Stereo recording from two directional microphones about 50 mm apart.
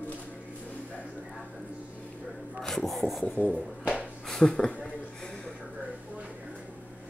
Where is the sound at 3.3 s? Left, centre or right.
Left.